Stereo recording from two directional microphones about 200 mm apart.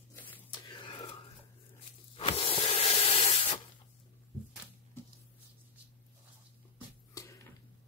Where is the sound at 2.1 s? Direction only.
30° left (ahead or behind).